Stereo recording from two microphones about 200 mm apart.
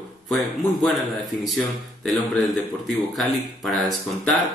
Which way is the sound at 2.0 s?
Centre (ahead or behind).